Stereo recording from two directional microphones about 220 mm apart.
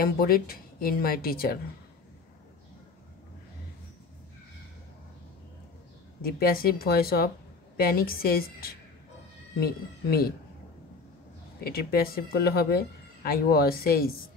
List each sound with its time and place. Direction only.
0.0 s speech: 45° left (ahead or behind)
6.2 s speech: 40° left (ahead or behind)
11.6 s speech: 45° left (ahead or behind)